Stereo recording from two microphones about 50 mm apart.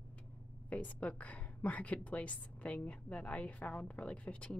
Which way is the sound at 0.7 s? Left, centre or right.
Left.